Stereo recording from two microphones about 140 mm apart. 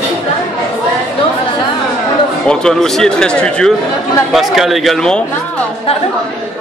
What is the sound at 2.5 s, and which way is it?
Speech, 5° left (ahead or behind).